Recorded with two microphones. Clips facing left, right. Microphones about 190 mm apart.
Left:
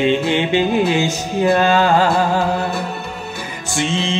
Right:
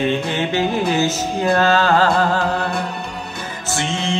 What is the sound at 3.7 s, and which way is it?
Music, 15° left (ahead or behind).